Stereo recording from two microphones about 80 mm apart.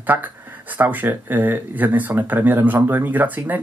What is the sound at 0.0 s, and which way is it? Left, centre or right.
Speech, right.